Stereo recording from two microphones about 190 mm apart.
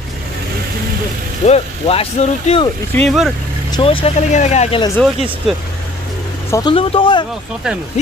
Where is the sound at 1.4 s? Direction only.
30° left (ahead or behind).